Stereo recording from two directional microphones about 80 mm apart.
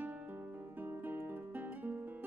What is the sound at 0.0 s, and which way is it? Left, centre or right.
Music, right.